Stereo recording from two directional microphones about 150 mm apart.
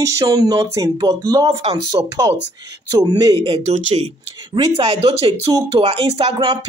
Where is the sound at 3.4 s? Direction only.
40° right (ahead or behind).